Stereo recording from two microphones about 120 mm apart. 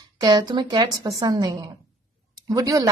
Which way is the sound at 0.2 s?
35° right (ahead or behind).